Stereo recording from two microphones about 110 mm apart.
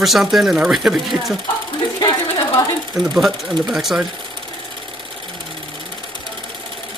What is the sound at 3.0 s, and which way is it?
Speech, 5° right (ahead or behind).